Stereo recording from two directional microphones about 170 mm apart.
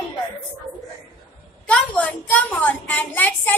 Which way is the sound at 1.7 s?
10° left (ahead or behind).